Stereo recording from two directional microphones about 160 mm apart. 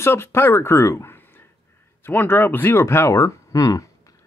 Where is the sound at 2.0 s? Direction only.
15° left (ahead or behind).